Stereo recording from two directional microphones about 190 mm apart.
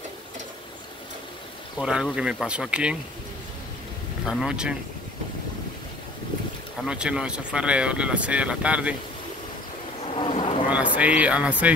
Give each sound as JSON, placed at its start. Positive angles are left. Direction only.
{"t": 1.8, "sound": "speech", "side_deg": -5}
{"t": 4.3, "sound": "speech", "side_deg": -5}
{"t": 6.8, "sound": "speech", "side_deg": -5}
{"t": 10.1, "sound": "bee", "side_deg": 30}
{"t": 11.0, "sound": "speech", "side_deg": -5}